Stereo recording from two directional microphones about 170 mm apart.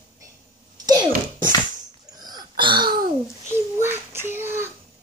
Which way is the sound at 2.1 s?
25° right (ahead or behind).